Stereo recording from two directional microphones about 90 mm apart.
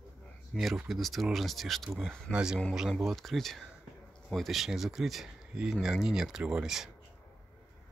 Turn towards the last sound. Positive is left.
turn(degrees=-5)  # may be behind; listen again after turning